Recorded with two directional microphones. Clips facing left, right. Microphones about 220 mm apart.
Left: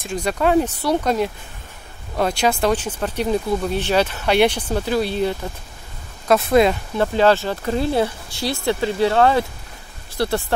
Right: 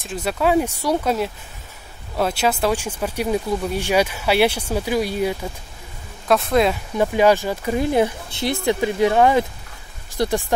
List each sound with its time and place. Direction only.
0.0 s speech: 5° right (ahead or behind)
6.2 s speech: centre (ahead or behind)
7.0 s speech: 15° right (ahead or behind)